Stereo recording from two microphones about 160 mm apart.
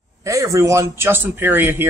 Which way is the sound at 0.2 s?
20° right (ahead or behind).